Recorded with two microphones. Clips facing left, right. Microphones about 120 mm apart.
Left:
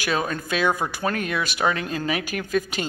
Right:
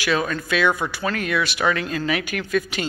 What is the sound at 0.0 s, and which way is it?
Speech, 35° left (ahead or behind).